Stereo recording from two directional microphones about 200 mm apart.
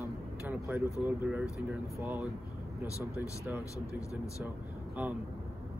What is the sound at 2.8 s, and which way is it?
Speech, 15° left (ahead or behind).